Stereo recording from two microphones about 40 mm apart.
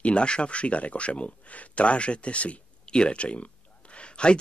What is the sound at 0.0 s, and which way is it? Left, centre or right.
Speech, left.